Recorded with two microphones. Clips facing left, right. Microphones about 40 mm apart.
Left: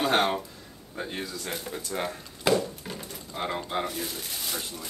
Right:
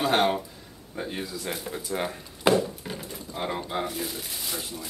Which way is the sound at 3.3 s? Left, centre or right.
Centre.